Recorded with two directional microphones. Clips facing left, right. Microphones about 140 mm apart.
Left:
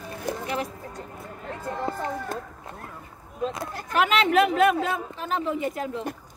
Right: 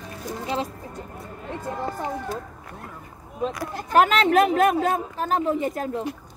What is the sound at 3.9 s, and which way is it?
Speech, 45° right (ahead or behind).